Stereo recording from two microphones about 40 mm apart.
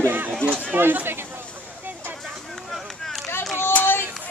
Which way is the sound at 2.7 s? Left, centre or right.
Centre.